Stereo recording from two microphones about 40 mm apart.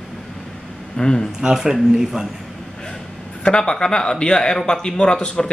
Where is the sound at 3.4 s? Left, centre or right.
Centre.